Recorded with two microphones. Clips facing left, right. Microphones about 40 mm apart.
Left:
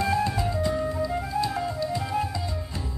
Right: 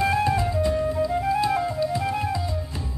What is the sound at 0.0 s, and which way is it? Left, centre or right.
Music, right.